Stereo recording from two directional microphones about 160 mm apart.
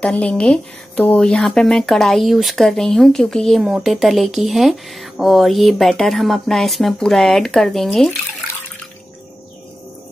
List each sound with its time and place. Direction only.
0.0 s speech: 10° left (ahead or behind)